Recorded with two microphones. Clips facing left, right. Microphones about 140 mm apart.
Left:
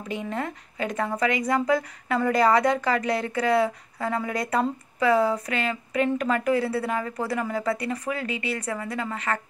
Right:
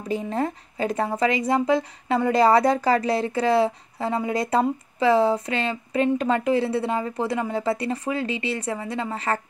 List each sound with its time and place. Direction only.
0.1 s a woman's voice: 35° right (ahead or behind)